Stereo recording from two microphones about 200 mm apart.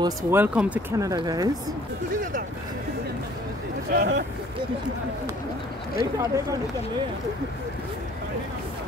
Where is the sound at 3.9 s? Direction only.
55° right (ahead or behind).